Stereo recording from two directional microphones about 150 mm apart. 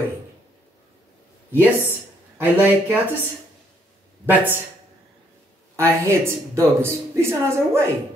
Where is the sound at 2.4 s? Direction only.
10° right (ahead or behind).